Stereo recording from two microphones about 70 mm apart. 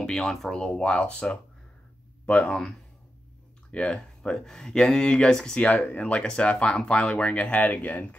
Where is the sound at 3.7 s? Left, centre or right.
Centre.